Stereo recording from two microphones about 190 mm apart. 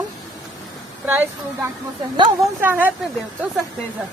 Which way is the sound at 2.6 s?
10° right (ahead or behind).